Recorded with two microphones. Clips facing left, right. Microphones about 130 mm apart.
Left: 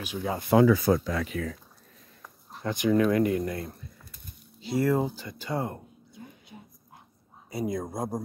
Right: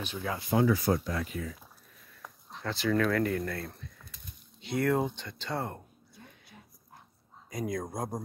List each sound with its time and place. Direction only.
0.0 s speech: 10° left (ahead or behind)
0.4 s speech: 80° left
2.6 s speech: 15° left (ahead or behind)
4.6 s a sound: centre (ahead or behind); by 6.6 s 20° left (ahead or behind)
7.4 s speech: 5° left (ahead or behind)